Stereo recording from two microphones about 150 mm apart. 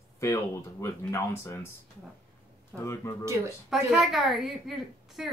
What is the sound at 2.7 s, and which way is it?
A woman's voice, centre (ahead or behind).